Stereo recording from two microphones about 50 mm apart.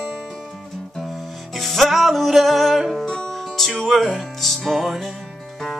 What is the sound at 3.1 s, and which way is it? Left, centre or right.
Music, centre.